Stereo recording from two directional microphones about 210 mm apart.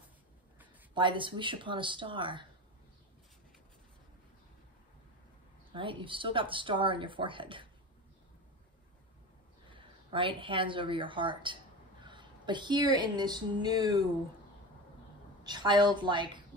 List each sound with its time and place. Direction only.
0.9 s speech: 25° right (ahead or behind)
5.7 s speech: 25° right (ahead or behind)
9.7 s speech: 25° right (ahead or behind)
15.4 s speech: 20° right (ahead or behind)